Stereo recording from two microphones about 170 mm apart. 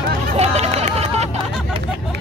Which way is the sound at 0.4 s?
40° right (ahead or behind).